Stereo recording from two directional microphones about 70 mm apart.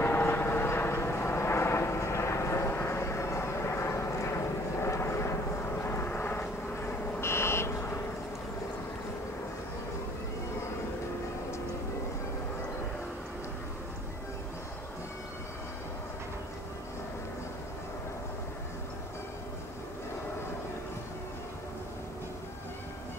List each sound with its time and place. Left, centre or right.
0.0 s vehicle: left